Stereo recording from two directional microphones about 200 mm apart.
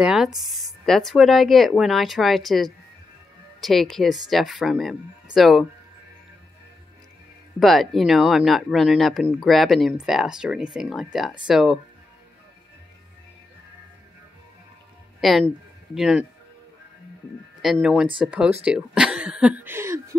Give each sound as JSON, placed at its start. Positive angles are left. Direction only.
{"t": 0.0, "sound": "speech", "side_deg": 0}
{"t": 7.6, "sound": "speech", "side_deg": 0}
{"t": 15.1, "sound": "speech", "side_deg": 0}
{"t": 17.7, "sound": "speech", "side_deg": -5}